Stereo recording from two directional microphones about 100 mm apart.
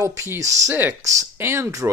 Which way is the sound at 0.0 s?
30° right (ahead or behind).